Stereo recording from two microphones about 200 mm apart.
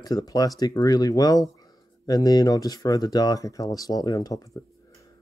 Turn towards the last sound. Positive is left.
turn(degrees=15)  # may be behind; listen again after turning